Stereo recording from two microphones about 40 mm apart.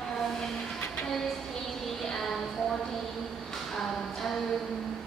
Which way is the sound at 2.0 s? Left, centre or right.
Centre.